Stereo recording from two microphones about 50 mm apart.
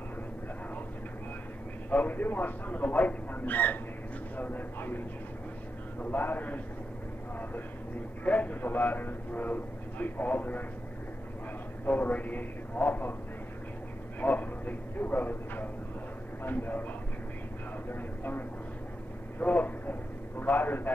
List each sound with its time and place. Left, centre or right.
1.9 s a man's voice: left
6.0 s a man's voice: left
8.2 s a man's voice: left
11.8 s a man's voice: left
14.2 s a man's voice: left
17.8 s speech: left
19.4 s a man's voice: left